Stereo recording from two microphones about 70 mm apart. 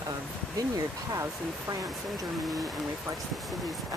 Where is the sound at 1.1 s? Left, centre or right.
Right.